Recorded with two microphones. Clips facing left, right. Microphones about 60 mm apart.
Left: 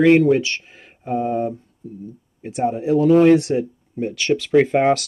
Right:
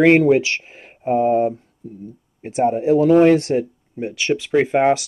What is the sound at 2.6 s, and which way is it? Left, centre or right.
Speech, right.